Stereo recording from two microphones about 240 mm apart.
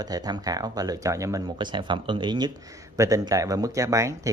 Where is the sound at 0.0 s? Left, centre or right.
Centre.